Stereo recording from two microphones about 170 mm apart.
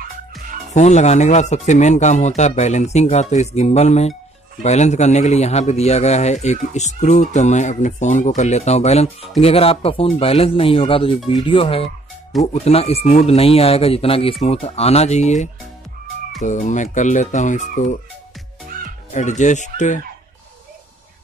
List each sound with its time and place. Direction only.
0.7 s a man's voice: 40° left (ahead or behind)
19.1 s speech: 45° left (ahead or behind)